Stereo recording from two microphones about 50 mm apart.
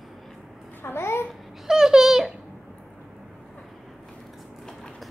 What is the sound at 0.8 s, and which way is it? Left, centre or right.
Babbling, left.